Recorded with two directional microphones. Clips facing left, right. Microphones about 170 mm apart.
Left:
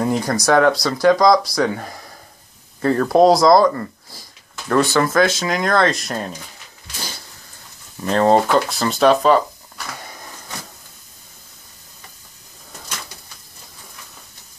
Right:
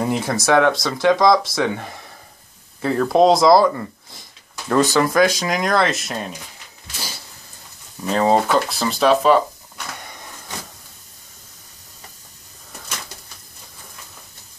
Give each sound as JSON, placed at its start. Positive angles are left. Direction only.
{"t": 0.0, "sound": "speech", "side_deg": -5}
{"t": 4.2, "sound": "a sound", "side_deg": -20}
{"t": 4.9, "sound": "speech", "side_deg": -15}
{"t": 8.0, "sound": "speech", "side_deg": -5}